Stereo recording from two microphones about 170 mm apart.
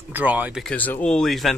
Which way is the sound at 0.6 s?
10° left (ahead or behind).